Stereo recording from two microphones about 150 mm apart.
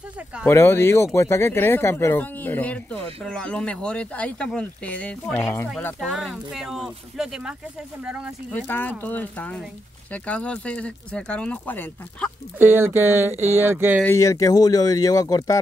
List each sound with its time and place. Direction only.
0.5 s speech: 15° left (ahead or behind); by 7.5 s 5° right (ahead or behind)
8.5 s speech: 15° left (ahead or behind)
12.5 s speech: 15° right (ahead or behind)
14.0 s speech: 20° left (ahead or behind)